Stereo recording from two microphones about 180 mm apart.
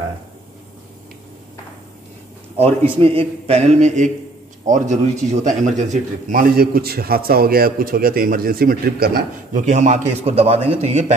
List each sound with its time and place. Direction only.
2.5 s a man's voice: 30° right (ahead or behind)